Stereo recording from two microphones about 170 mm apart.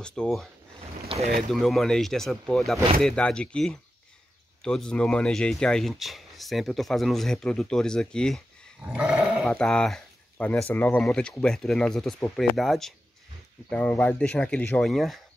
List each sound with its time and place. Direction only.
0.0 s speech: 5° left (ahead or behind)
1.0 s boat: 35° right (ahead or behind)
1.5 s speech: centre (ahead or behind)
8.8 s speech: 5° right (ahead or behind)